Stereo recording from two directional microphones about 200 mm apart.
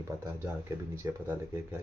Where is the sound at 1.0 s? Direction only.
15° right (ahead or behind).